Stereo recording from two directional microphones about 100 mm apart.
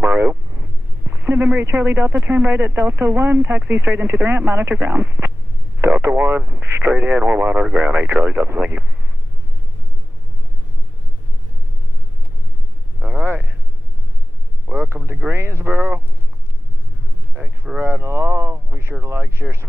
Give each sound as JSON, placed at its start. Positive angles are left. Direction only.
{"t": 0.0, "sound": "speech", "side_deg": -20}
{"t": 13.0, "sound": "a sound", "side_deg": -20}
{"t": 14.7, "sound": "speech", "side_deg": -15}
{"t": 17.4, "sound": "speech", "side_deg": -10}
{"t": 17.8, "sound": "speech", "side_deg": -25}